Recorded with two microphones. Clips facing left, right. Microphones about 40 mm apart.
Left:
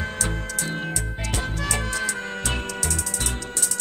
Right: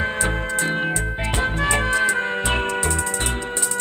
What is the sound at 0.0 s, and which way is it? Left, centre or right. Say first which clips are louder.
Music: right 6 dB; right.